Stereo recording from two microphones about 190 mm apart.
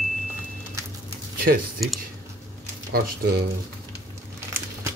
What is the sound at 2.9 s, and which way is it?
Dishes, 55° right (ahead or behind).